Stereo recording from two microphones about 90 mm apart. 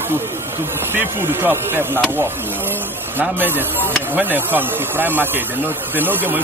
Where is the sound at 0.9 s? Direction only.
25° right (ahead or behind).